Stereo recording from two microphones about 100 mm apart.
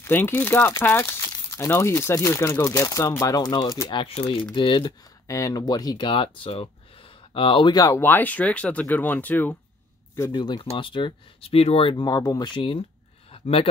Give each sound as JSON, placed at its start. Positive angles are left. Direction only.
{"t": 0.0, "sound": "speech", "side_deg": 20}
{"t": 4.6, "sound": "speech", "side_deg": 55}
{"t": 5.2, "sound": "speech", "side_deg": 30}
{"t": 6.0, "sound": "speech", "side_deg": 55}
{"t": 7.8, "sound": "speech", "side_deg": 25}
{"t": 10.3, "sound": "speech", "side_deg": 45}
{"t": 11.5, "sound": "speech", "side_deg": 80}
{"t": 12.0, "sound": "speech", "side_deg": 40}
{"t": 12.4, "sound": "speech", "side_deg": 55}
{"t": 13.3, "sound": "a sound", "side_deg": 70}